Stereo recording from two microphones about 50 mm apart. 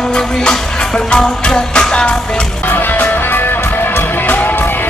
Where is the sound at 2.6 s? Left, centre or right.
Left.